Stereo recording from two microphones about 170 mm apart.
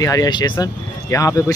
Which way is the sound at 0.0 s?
20° left (ahead or behind).